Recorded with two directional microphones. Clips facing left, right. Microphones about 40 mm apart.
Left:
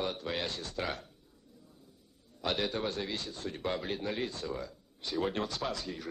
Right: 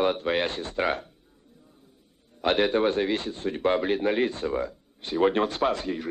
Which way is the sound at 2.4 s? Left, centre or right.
Right.